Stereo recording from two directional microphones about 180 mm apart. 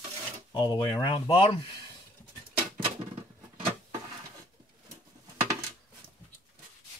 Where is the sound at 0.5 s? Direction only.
25° left (ahead or behind).